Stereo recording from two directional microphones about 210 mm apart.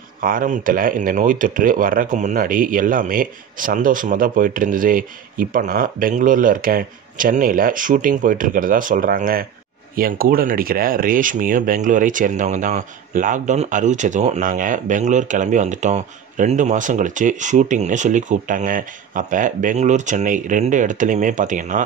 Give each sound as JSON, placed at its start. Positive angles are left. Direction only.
{"t": 0.2, "sound": "speech", "side_deg": -40}